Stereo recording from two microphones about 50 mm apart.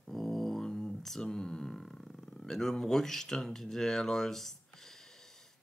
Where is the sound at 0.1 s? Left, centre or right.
Centre.